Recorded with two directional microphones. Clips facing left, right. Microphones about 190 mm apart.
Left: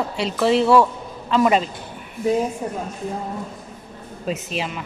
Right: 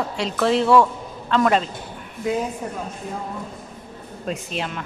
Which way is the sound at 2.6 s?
25° left (ahead or behind).